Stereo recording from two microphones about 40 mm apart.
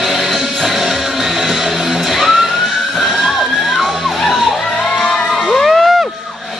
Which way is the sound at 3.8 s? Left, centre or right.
Centre.